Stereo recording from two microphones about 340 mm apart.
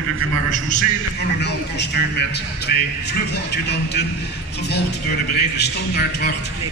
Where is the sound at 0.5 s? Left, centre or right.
Left.